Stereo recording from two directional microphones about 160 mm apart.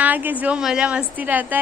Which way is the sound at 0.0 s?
10° right (ahead or behind).